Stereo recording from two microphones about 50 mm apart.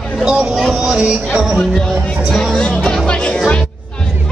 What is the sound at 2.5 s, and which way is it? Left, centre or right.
Music, centre.